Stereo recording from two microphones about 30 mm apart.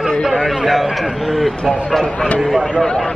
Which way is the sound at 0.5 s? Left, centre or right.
Centre.